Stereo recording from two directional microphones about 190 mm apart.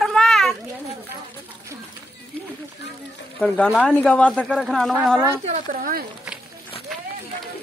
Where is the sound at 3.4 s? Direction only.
Centre (ahead or behind).